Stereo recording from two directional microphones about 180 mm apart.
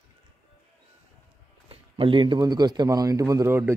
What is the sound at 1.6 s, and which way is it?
A man's voice, 30° right (ahead or behind).